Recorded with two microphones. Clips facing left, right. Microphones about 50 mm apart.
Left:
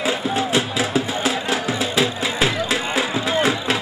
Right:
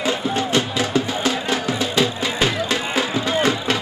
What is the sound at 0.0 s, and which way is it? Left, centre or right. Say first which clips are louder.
Music: even; centre.